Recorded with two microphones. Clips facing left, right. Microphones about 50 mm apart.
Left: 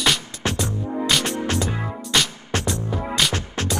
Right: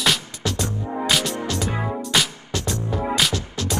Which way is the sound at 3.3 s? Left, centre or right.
Left.